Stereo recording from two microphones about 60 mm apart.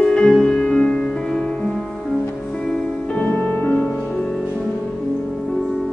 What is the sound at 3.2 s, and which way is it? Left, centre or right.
Music, left.